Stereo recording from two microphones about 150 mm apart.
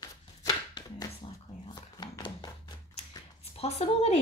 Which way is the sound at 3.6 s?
45° left (ahead or behind).